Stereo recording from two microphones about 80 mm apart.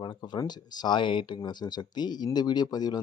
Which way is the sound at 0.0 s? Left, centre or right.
Left.